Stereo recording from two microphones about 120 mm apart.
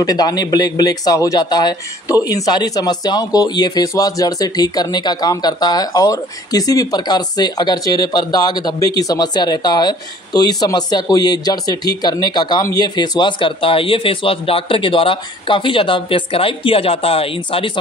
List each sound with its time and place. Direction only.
0.0 s a man's voice: 35° left (ahead or behind); by 17.6 s 50° left (ahead or behind)